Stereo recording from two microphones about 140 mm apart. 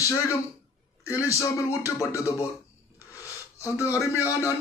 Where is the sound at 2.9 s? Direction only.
20° left (ahead or behind).